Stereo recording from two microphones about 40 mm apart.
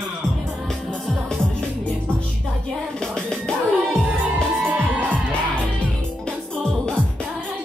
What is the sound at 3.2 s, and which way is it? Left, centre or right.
Music, centre.